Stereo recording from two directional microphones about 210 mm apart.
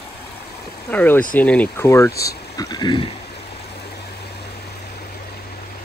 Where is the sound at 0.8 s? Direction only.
10° left (ahead or behind).